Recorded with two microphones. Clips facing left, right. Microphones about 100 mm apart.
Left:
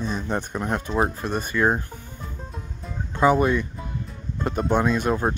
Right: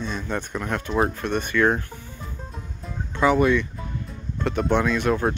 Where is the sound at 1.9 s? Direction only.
Centre (ahead or behind).